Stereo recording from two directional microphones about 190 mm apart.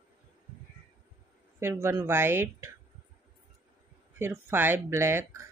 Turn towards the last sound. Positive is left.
turn(degrees=-15)  # may be behind; listen again after turning